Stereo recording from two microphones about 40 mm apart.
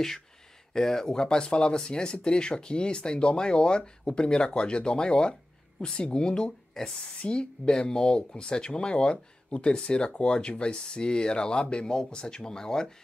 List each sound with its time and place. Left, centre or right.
0.7 s speech: centre